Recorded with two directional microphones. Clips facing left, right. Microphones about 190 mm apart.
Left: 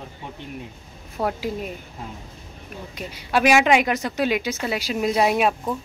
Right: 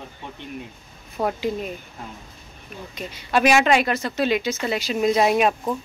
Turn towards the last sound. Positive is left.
turn(degrees=0)  # may be behind; listen again after turning